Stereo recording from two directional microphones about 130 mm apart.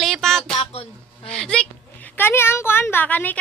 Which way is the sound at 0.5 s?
50° left (ahead or behind).